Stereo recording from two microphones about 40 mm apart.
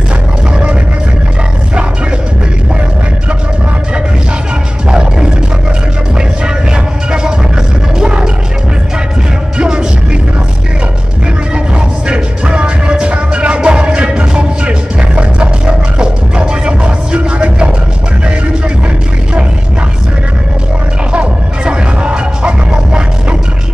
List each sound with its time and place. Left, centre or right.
4.8 s roar: centre
8.0 s music: centre
9.6 s music: centre
12.1 s music: right
21.1 s music: right